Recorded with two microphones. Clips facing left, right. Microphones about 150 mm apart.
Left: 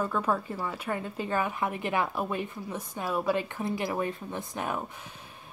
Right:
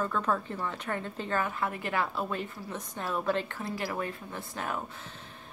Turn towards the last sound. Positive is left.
turn(degrees=15)  # may be behind; listen again after turning